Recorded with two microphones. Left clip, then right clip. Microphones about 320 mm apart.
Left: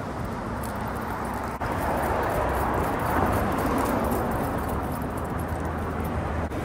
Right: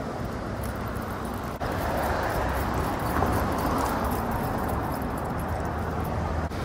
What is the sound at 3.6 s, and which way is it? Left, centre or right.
Vehicle, left.